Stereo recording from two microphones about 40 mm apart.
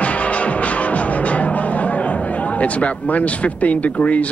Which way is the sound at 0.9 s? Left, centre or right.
Left.